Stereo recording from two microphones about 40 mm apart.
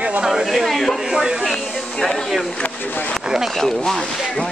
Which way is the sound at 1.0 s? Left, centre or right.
Centre.